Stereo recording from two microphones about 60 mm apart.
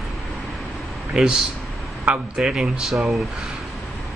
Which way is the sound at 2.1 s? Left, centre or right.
Right.